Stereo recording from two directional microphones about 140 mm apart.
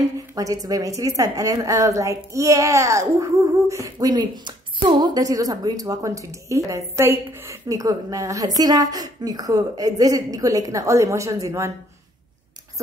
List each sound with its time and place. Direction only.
0.0 s a woman's voice: 25° right (ahead or behind)